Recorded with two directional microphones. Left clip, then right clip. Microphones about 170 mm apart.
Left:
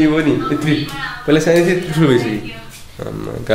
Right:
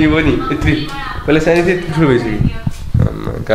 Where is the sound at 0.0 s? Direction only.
20° right (ahead or behind); by 2.2 s centre (ahead or behind).